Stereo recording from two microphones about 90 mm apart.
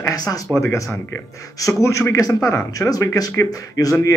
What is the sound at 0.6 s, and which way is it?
A man's voice, 30° left (ahead or behind).